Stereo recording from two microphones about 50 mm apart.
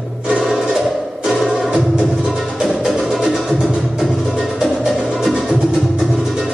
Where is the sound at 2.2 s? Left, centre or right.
Centre.